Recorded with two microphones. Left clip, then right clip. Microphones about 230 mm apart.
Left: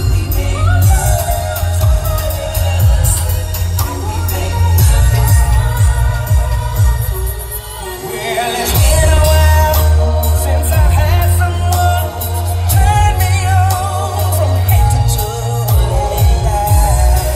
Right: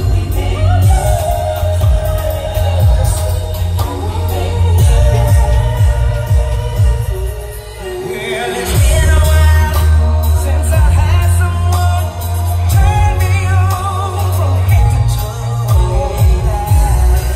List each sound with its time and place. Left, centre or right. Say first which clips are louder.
4.9 s music: right 3 dB; left
9.0 s music: left 4 dB; left
12.7 s music: left 3 dB; left
16.2 s music: left 4 dB; left